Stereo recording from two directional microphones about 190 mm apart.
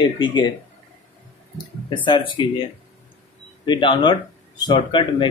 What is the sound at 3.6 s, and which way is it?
Speech, 25° left (ahead or behind).